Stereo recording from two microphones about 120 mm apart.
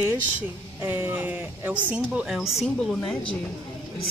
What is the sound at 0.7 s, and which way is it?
Speech, 20° right (ahead or behind).